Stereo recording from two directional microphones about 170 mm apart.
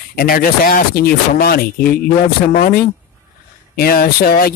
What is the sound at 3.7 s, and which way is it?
Speech, 60° left (ahead or behind).